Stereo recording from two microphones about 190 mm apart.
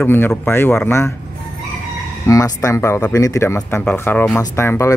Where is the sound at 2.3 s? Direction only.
15° left (ahead or behind).